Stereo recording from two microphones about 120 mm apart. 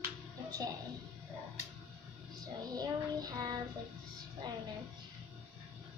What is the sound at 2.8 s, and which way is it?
Child singing, 35° right (ahead or behind).